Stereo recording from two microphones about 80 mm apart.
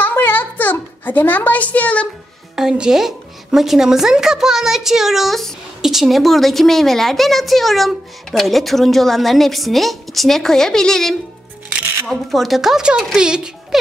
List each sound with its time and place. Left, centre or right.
0.0 s a sound: left
2.5 s speech: centre
11.7 s music: right
12.1 s speech: centre